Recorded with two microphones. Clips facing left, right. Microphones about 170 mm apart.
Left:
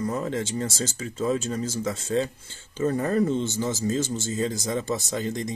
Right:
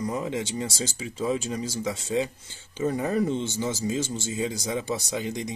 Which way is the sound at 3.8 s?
15° right (ahead or behind).